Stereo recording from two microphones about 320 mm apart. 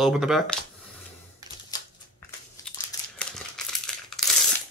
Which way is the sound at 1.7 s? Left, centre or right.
Centre.